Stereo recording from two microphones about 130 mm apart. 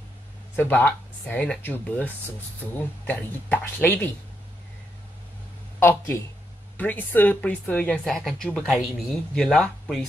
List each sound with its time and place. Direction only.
0.6 s speech: 15° left (ahead or behind)
5.8 s speech: 20° left (ahead or behind)